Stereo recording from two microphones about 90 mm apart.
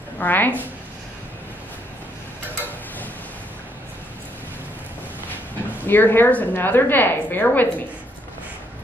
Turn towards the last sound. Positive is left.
turn(degrees=20)  # may be behind; listen again after turning